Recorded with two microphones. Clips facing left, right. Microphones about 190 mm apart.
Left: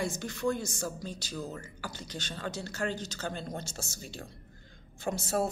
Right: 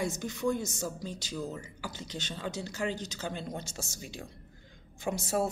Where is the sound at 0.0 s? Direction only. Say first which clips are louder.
Even; 20° right (ahead or behind).